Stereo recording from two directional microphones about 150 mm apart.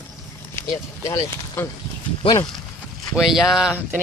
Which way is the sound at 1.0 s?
20° left (ahead or behind).